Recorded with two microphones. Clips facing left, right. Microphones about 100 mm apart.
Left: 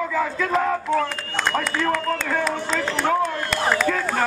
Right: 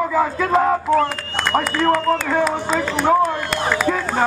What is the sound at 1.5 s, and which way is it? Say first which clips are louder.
Speech: right 7 dB; 10° right (ahead or behind).